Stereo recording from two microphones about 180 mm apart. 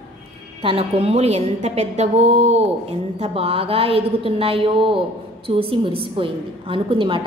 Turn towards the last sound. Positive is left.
turn(degrees=-30)  # may be behind; listen again after turning